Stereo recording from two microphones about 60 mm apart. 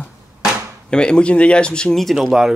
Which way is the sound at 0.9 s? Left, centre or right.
Centre.